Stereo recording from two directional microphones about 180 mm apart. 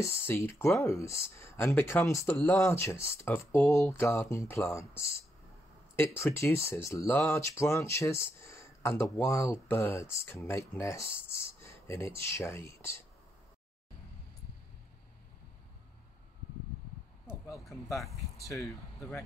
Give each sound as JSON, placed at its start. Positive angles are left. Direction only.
{"t": 0.0, "sound": "speech", "side_deg": 15}
{"t": 2.3, "sound": "speech", "side_deg": 5}
{"t": 2.6, "sound": "speech", "side_deg": 15}
{"t": 11.2, "sound": "a sound", "side_deg": 15}
{"t": 11.9, "sound": "speech", "side_deg": 15}
{"t": 17.8, "sound": "speech", "side_deg": 15}